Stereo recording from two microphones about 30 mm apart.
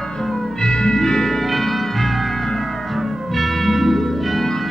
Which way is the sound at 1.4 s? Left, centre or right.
Centre.